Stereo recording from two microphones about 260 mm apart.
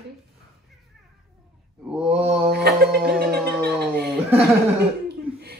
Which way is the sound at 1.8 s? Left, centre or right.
Centre.